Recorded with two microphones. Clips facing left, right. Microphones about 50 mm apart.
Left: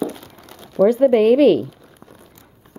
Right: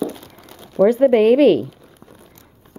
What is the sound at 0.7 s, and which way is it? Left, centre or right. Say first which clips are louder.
Speech: right 1 dB; right.